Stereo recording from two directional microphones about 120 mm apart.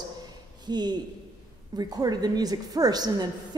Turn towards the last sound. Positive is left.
turn(degrees=-35)  # may be behind; listen again after turning